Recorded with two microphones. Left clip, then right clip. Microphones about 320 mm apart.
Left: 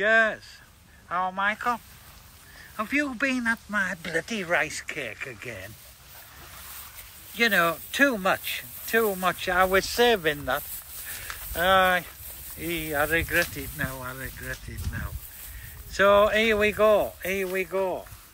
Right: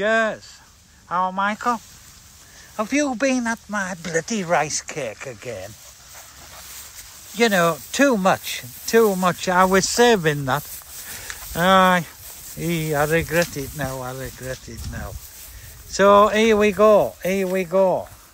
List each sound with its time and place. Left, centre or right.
0.0 s speech: centre
7.3 s speech: centre
11.6 s speech: centre